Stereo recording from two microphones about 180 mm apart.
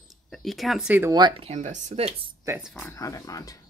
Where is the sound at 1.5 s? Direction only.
40° right (ahead or behind).